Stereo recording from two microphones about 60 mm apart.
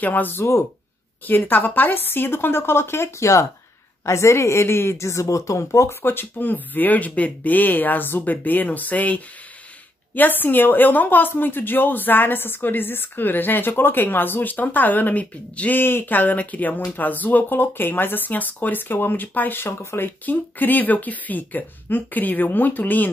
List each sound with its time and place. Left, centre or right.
0.0 s a woman's voice: left
6.0 s a woman's voice: left
20.2 s speech: left